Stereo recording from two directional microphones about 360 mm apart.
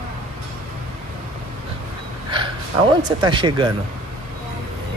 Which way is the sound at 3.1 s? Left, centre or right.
Centre.